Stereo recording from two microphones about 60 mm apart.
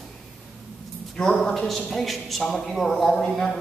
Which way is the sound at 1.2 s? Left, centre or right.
Centre.